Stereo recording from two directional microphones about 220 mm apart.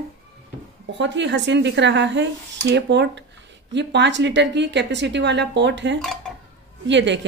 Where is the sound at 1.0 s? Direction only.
55° right (ahead or behind).